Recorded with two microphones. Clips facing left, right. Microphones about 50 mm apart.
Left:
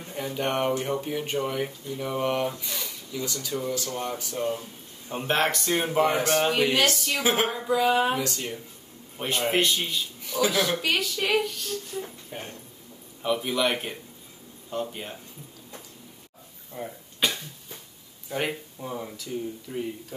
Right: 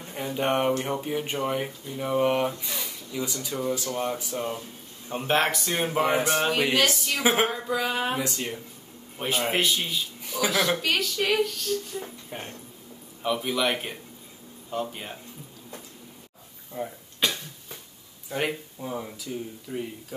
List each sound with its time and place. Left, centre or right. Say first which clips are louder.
0.1 s speech: right 2 dB; centre
8.2 s speech: even; centre
12.3 s speech: right 1 dB; centre
16.7 s a sound: right 3 dB; centre
18.3 s speech: right 1 dB; centre